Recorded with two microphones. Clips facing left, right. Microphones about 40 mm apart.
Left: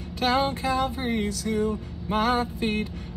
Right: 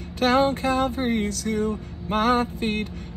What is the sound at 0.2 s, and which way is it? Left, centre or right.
Music, right.